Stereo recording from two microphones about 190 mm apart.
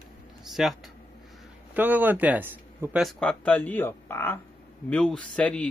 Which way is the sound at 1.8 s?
10° right (ahead or behind).